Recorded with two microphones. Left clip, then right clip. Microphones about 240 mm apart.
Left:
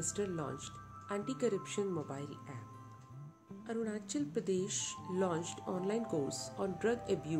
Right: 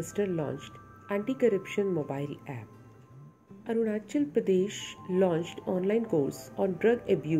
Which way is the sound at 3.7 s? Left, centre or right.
Centre.